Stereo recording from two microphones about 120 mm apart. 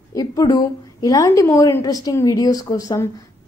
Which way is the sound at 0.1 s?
30° left (ahead or behind).